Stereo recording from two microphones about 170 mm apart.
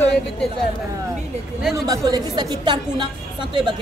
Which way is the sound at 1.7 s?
20° right (ahead or behind).